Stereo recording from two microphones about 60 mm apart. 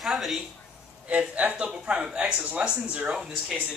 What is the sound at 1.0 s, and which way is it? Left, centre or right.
Speech, right.